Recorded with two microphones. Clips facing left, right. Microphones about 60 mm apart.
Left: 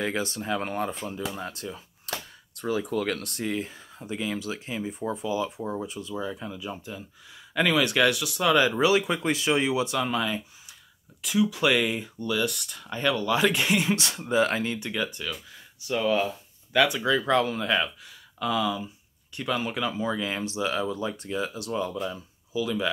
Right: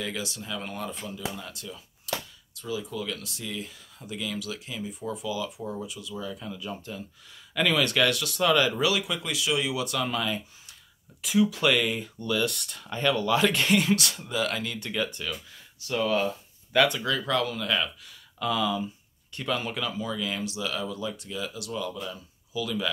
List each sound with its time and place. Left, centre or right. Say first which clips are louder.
0.0 s speech: left 5 dB; left
2.1 s a sound: right 2 dB; left
2.5 s speech: left 6 dB; left; by 8.7 s centre
8.7 s speech: left 4 dB; left; by 10.8 s centre
11.2 s speech: right 1 dB; centre
11.6 s speech: left 1 dB; centre; by 14.8 s left
14.8 s speech: even; centre
15.9 s speech: left 1 dB; centre
16.3 s a sound: right 2 dB; centre
17.0 s speech: left 4 dB; centre
18.4 s speech: even; centre
19.8 s speech: left 3 dB; left